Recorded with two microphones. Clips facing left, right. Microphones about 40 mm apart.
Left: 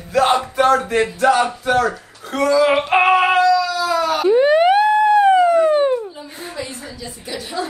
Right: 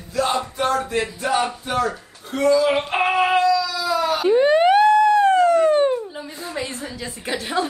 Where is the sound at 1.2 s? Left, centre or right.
Left.